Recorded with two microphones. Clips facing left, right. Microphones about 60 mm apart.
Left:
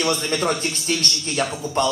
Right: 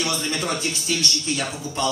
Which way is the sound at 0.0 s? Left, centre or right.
Left.